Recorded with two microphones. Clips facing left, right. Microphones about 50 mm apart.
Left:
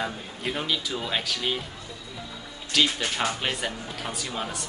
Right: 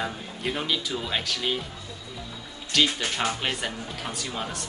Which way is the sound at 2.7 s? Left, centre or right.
Centre.